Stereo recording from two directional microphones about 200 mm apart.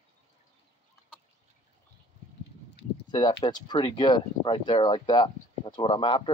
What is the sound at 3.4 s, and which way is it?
Speech, 25° left (ahead or behind).